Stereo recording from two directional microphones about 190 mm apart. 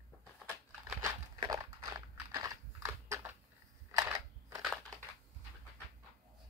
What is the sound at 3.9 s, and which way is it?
Camera, 15° right (ahead or behind).